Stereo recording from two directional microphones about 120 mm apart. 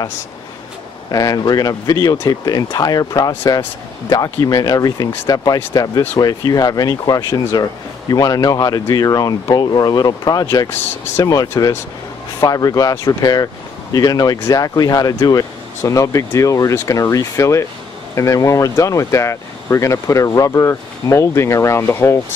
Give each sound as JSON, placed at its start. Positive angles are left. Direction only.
{"t": 1.1, "sound": "speech", "side_deg": 30}